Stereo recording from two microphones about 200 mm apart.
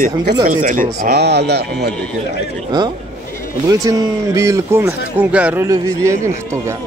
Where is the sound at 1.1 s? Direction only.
55° right (ahead or behind).